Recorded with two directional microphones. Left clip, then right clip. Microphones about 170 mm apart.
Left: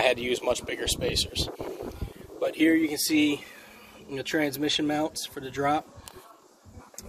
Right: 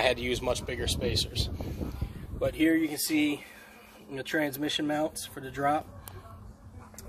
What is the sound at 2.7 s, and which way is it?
Speech, 20° left (ahead or behind).